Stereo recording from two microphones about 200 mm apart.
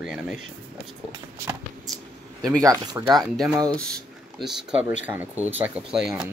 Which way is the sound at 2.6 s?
15° right (ahead or behind).